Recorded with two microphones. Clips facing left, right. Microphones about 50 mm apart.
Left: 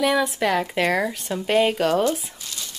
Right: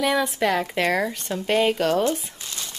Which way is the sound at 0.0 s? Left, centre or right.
Centre.